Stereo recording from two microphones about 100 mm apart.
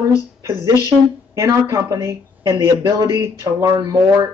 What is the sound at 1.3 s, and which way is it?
A woman's voice, 30° right (ahead or behind).